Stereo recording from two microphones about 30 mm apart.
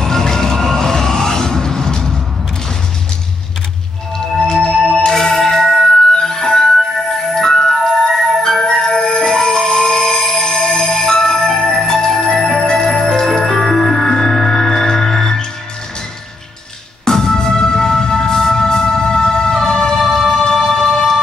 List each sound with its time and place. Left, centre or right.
0.0 s a sound: centre
4.4 s music: centre
4.7 s music: centre
5.1 s music: centre
17.0 s music: centre